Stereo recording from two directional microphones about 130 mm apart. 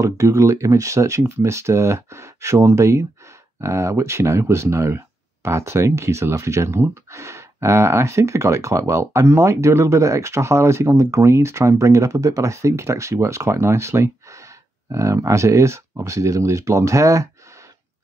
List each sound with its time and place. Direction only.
0.0 s speech: 25° right (ahead or behind)